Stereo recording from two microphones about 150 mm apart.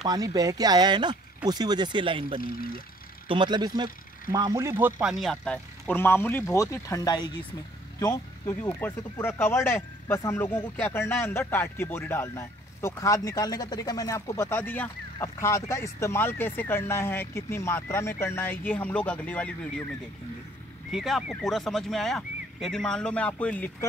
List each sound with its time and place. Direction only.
0.0 s speech: 25° right (ahead or behind)
2.5 s speech: 75° left (ahead or behind)
3.3 s speech: 30° right (ahead or behind); by 5.1 s 15° right (ahead or behind)
5.2 s speech: 5° left (ahead or behind)